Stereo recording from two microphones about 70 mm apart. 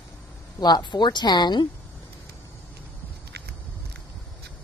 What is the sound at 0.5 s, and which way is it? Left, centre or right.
Speech, left.